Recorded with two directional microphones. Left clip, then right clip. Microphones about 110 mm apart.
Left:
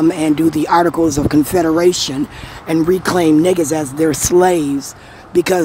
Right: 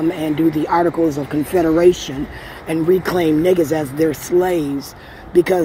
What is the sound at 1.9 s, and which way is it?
Speech, 50° left (ahead or behind).